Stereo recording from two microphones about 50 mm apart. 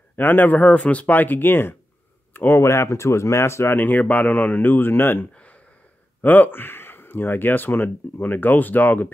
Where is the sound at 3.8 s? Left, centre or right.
Left.